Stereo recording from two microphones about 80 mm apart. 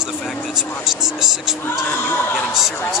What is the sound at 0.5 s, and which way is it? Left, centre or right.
A woman's voice, centre.